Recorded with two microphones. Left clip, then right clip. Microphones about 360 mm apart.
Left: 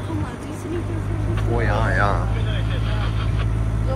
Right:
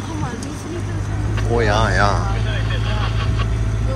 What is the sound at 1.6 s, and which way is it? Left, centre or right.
Speech, centre.